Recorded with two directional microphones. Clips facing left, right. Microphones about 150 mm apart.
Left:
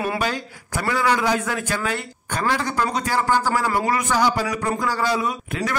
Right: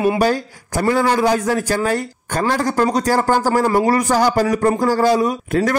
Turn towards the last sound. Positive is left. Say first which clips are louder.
# right 8 dB
turn(degrees=-40)  # may be behind; listen again after turning